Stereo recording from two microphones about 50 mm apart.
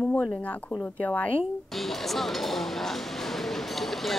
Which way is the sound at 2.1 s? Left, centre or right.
Centre.